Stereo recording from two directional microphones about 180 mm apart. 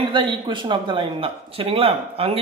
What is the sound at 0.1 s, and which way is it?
Speech, 25° right (ahead or behind).